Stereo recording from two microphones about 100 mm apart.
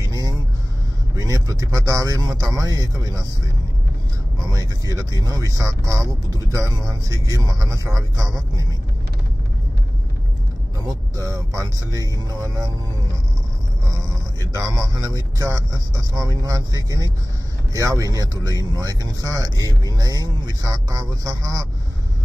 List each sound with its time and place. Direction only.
1.1 s vehicle: 35° right (ahead or behind)
1.9 s speech: 35° right (ahead or behind)
4.5 s speech: 35° right (ahead or behind)
10.8 s speech: 35° right (ahead or behind)
14.4 s speech: 35° right (ahead or behind)